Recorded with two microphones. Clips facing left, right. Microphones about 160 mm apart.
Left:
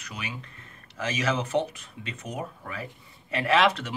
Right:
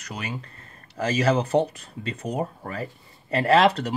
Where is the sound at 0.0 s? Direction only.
40° right (ahead or behind).